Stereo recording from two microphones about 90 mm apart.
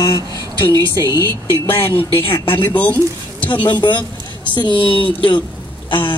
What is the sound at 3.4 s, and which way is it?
Speech, 60° left (ahead or behind).